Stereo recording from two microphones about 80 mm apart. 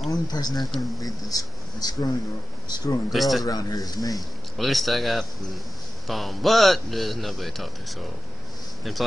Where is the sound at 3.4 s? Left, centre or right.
Left.